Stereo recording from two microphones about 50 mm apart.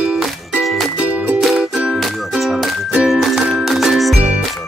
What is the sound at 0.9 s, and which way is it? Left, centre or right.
Music, right.